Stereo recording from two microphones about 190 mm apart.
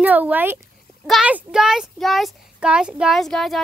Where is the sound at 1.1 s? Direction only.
5° right (ahead or behind).